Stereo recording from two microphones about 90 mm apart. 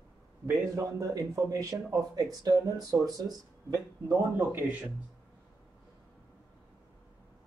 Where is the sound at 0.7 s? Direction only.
40° right (ahead or behind).